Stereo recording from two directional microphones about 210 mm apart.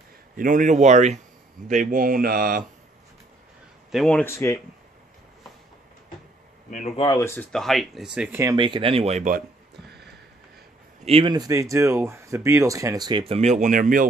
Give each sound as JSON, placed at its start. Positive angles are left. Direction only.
{"t": 0.4, "sound": "speech", "side_deg": -40}
{"t": 3.9, "sound": "speech", "side_deg": 5}
{"t": 6.7, "sound": "speech", "side_deg": 35}
{"t": 7.1, "sound": "speech", "side_deg": 10}
{"t": 11.1, "sound": "speech", "side_deg": -25}